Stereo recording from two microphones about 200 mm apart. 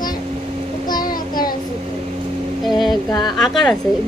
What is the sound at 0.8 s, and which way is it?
Child singing, 20° left (ahead or behind).